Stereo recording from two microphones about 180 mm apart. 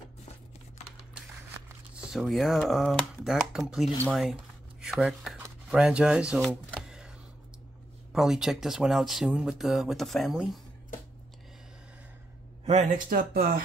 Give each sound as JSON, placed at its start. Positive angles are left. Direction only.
{"t": 2.0, "sound": "speech", "side_deg": 0}
{"t": 6.7, "sound": "a sound", "side_deg": 0}
{"t": 8.1, "sound": "speech", "side_deg": -5}
{"t": 12.6, "sound": "speech", "side_deg": -45}